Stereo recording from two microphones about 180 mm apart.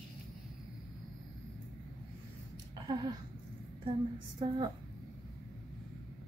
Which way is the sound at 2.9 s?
25° right (ahead or behind).